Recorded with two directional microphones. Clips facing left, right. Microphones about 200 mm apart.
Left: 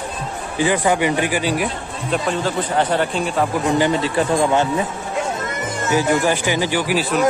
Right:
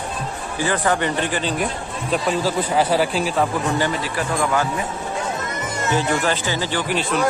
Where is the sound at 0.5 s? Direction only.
15° left (ahead or behind).